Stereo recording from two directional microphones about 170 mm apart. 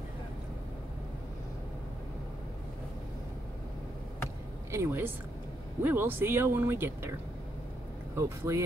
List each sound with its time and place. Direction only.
4.6 s a woman's voice: 15° right (ahead or behind)
8.2 s speech: 15° right (ahead or behind)